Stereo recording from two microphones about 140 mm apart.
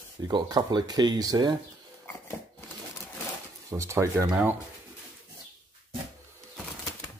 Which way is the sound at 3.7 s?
20° right (ahead or behind).